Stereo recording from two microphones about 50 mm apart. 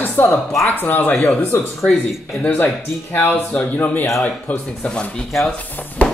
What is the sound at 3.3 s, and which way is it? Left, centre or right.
Speech, left.